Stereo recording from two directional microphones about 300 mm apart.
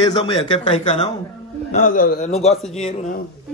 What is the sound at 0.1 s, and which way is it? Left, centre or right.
Speech, left.